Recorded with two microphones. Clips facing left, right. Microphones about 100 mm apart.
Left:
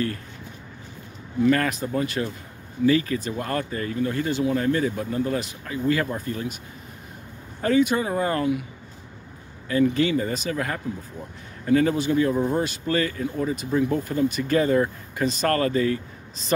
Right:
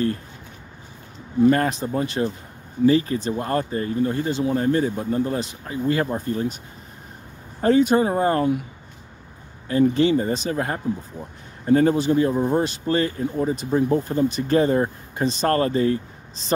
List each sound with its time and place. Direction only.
1.5 s speech: 30° right (ahead or behind)
7.6 s speech: 40° right (ahead or behind)
9.7 s speech: 35° right (ahead or behind)